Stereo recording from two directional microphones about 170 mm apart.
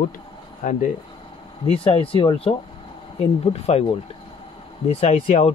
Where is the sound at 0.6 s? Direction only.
50° left (ahead or behind).